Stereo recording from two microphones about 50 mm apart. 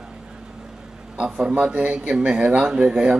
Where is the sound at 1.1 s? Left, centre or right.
Right.